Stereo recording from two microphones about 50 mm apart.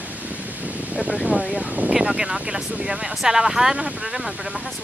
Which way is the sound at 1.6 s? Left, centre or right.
Right.